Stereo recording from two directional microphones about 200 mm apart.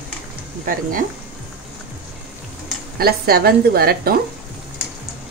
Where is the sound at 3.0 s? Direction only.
50° right (ahead or behind).